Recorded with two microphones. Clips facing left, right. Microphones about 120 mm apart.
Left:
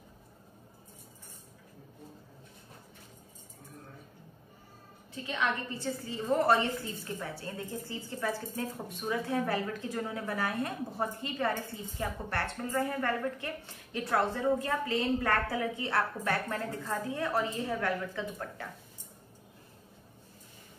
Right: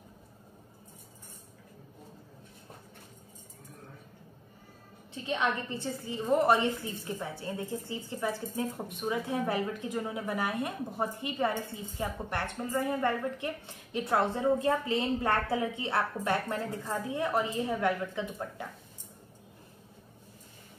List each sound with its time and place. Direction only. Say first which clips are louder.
5.1 s a woman's voice: right 2 dB; 20° right (ahead or behind)